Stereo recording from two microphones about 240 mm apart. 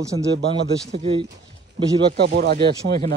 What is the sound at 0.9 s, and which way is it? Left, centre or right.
Speech, right.